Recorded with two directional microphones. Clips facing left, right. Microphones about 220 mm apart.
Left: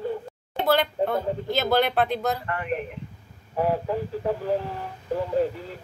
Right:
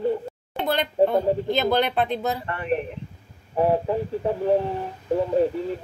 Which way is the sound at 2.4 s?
25° right (ahead or behind).